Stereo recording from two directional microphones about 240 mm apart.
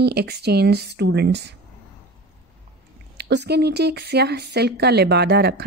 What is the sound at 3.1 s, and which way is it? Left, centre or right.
Speech, right.